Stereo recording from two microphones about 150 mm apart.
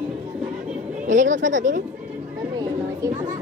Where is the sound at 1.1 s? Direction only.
55° right (ahead or behind).